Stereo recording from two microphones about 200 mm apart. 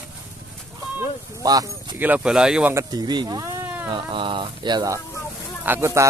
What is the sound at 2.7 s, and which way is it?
Speech, 20° right (ahead or behind).